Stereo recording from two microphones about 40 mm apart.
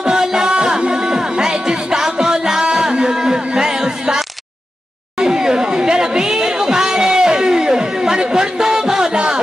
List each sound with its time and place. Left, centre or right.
0.0 s music: centre
5.2 s chatter: centre